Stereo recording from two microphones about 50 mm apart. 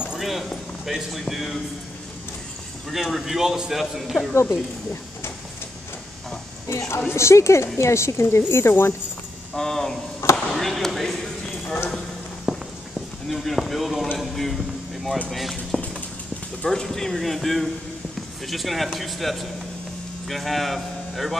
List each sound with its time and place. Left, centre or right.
0.2 s a sound: centre
1.2 s a man's voice: centre
2.9 s a man's voice: centre
4.3 s speech: left
6.7 s a woman's voice: left
7.2 s speech: left
9.6 s a man's voice: centre
12.5 s run: centre
13.3 s a man's voice: centre
15.7 s clip-clop: centre
16.6 s a man's voice: centre